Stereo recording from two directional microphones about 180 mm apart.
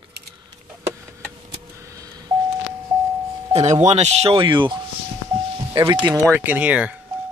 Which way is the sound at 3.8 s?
35° right (ahead or behind).